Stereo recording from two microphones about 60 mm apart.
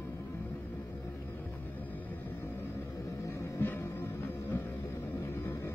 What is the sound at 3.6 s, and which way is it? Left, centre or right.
Music, left.